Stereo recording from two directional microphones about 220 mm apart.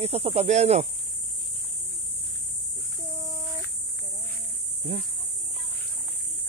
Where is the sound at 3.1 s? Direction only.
10° right (ahead or behind).